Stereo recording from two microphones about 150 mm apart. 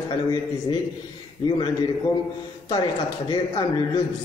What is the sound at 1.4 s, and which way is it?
Speech, 30° left (ahead or behind).